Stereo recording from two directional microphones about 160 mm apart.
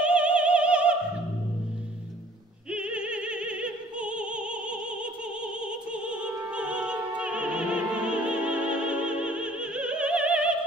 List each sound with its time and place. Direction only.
0.0 s opera: 5° right (ahead or behind)
2.7 s opera: 5° right (ahead or behind)